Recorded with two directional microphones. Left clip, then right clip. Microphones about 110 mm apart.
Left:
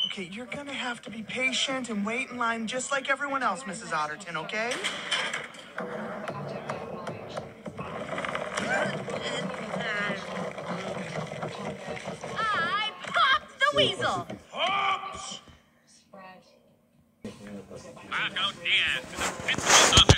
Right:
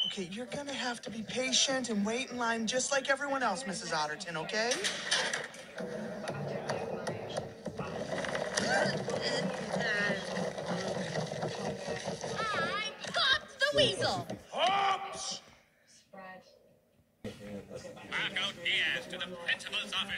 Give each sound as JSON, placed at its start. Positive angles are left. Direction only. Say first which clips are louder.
{"t": 0.1, "sound": "speech", "louder": "left 3 dB", "side_deg": -35}
{"t": 6.8, "sound": "music", "louder": "even", "side_deg": -10}
{"t": 7.9, "sound": "vehicle", "louder": "left 4 dB", "side_deg": -35}
{"t": 10.2, "sound": "boat", "louder": "left 2 dB", "side_deg": -40}
{"t": 12.8, "sound": "a sound", "louder": "left 6 dB", "side_deg": -40}
{"t": 18.1, "sound": "speech", "louder": "left 5 dB", "side_deg": -35}